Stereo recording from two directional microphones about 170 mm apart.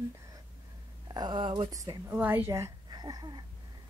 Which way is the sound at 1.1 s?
25° right (ahead or behind).